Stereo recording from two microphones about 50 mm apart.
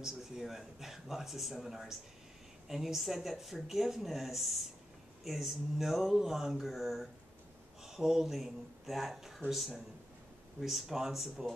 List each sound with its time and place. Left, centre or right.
0.0 s speech: centre